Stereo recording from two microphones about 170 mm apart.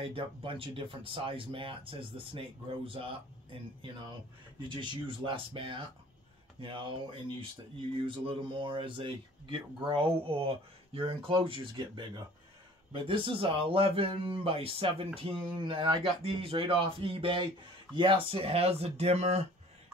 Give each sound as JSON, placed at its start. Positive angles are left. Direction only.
{"t": 0.0, "sound": "speech", "side_deg": -30}
{"t": 4.6, "sound": "speech", "side_deg": -30}